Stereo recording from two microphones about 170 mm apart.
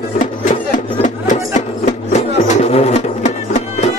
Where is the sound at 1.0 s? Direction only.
45° left (ahead or behind).